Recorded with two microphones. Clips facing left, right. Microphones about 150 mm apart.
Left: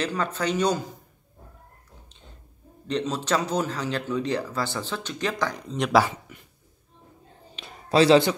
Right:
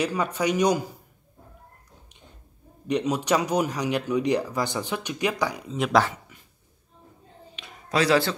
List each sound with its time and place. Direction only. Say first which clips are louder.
0.0 s speech: right 2 dB; 10° right (ahead or behind)
2.9 s speech: right 2 dB; 15° right (ahead or behind)
7.5 s a sound: left 5 dB; 30° left (ahead or behind)